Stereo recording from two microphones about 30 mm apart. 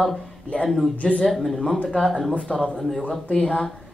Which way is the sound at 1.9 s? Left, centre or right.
Centre.